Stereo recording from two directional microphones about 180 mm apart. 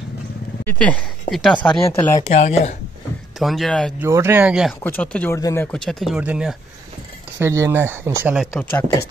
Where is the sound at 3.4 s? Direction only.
Centre (ahead or behind).